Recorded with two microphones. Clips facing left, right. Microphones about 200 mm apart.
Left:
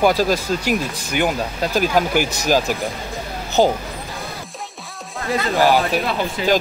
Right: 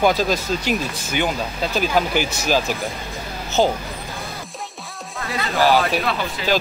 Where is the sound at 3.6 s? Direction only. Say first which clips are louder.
Left 2 dB; 15° left (ahead or behind).